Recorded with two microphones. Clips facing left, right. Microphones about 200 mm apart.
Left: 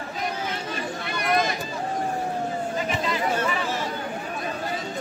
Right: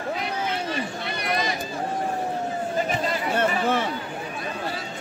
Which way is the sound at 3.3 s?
60° right (ahead or behind).